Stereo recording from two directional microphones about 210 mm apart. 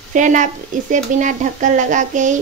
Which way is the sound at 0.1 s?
35° right (ahead or behind).